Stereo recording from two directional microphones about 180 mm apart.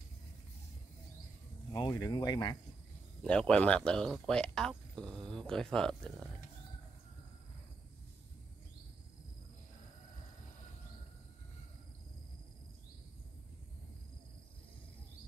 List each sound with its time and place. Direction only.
1.7 s speech: 20° left (ahead or behind)
3.2 s speech: 5° left (ahead or behind)